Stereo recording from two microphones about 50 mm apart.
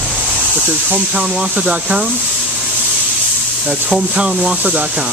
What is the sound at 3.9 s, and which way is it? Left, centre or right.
Speech, right.